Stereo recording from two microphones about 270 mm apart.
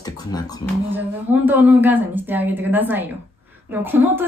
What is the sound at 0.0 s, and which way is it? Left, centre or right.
Beatboxing, centre.